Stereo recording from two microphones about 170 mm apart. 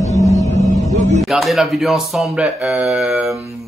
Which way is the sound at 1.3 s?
Centre (ahead or behind).